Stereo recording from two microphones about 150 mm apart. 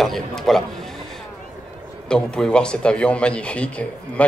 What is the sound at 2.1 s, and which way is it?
A man's voice, 5° left (ahead or behind).